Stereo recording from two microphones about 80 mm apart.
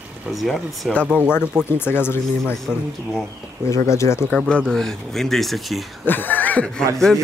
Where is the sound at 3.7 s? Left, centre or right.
Left.